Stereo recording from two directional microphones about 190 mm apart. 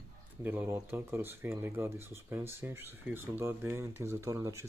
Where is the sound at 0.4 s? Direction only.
10° right (ahead or behind).